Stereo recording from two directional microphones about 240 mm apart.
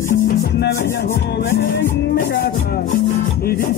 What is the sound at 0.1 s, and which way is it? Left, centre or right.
Music, left.